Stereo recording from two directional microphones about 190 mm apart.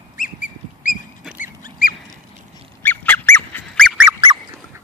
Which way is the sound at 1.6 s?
45° left (ahead or behind).